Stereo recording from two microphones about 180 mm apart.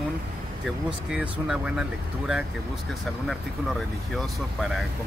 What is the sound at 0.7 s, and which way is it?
Speech, 5° right (ahead or behind).